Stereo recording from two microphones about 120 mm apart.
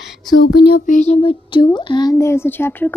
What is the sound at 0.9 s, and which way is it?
Speech, 70° left (ahead or behind).